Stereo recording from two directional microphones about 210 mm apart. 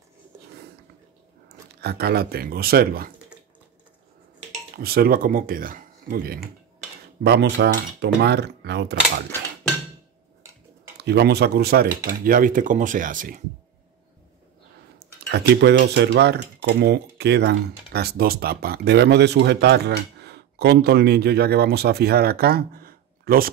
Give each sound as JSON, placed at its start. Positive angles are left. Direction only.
{"t": 1.8, "sound": "speech", "side_deg": -50}
{"t": 4.7, "sound": "speech", "side_deg": -45}
{"t": 11.0, "sound": "speech", "side_deg": -50}
{"t": 15.3, "sound": "speech", "side_deg": -55}